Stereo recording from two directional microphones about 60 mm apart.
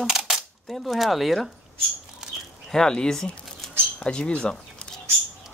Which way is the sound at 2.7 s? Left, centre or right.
Centre.